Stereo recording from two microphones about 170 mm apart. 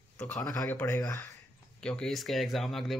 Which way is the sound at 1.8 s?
5° left (ahead or behind).